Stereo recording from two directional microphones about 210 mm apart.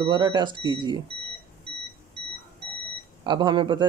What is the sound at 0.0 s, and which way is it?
A man's voice, 20° right (ahead or behind).